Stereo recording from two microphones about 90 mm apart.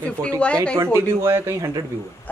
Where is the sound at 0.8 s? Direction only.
30° right (ahead or behind).